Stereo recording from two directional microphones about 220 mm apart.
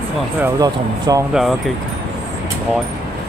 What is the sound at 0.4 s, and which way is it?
Speech, 20° right (ahead or behind).